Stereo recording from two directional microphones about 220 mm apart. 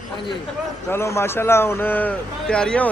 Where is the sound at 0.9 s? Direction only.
10° left (ahead or behind).